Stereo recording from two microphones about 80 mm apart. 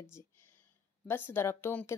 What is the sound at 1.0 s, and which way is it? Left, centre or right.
Speech, left.